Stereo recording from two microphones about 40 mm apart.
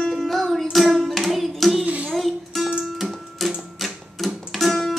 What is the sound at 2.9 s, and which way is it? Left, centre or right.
Music, centre.